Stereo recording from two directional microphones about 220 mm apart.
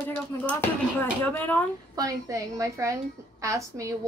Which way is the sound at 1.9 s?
15° right (ahead or behind).